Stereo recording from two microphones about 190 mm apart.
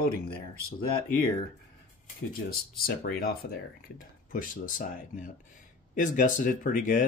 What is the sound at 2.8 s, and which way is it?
Speech, 50° left (ahead or behind).